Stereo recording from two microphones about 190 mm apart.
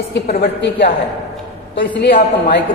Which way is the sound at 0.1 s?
60° left (ahead or behind).